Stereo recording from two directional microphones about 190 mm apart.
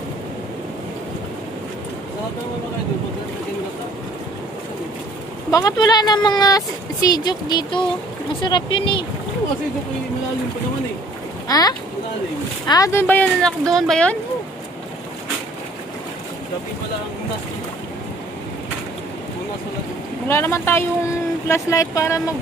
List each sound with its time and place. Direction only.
5.5 s speech: 20° left (ahead or behind)
11.4 s speech: 20° left (ahead or behind); by 14.1 s 5° left (ahead or behind)
20.2 s speech: 10° left (ahead or behind)